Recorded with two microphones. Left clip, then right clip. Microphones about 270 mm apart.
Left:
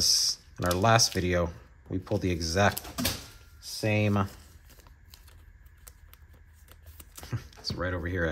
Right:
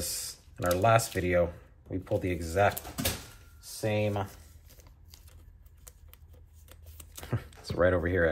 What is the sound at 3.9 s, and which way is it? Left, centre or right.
Speech, left.